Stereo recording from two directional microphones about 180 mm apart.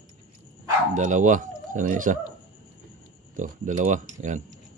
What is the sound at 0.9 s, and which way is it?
Speech, 45° right (ahead or behind).